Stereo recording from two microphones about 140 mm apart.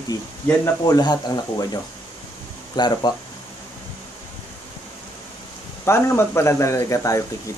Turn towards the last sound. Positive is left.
turn(degrees=20)  # may be behind; listen again after turning